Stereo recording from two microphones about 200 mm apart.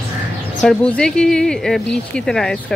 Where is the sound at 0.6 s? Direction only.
5° left (ahead or behind).